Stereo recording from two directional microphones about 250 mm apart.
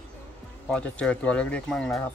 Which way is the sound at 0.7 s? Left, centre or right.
Centre.